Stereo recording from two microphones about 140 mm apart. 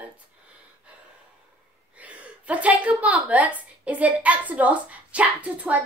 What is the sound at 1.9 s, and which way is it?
A woman's voice, 10° right (ahead or behind).